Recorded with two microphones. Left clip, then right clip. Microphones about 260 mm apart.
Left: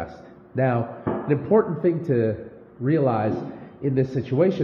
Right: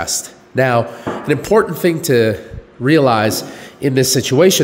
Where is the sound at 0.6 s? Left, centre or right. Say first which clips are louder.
Right 9 dB; right.